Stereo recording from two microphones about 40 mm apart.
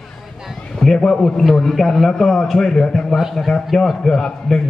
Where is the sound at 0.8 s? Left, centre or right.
Centre.